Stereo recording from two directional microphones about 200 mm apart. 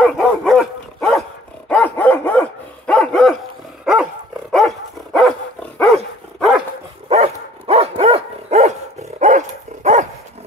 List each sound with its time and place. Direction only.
0.0 s dog: centre (ahead or behind)
7.1 s dog: 30° right (ahead or behind)